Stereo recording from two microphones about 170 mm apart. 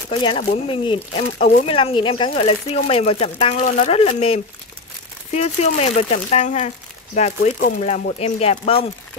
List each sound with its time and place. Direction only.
0.1 s speech: 30° left (ahead or behind)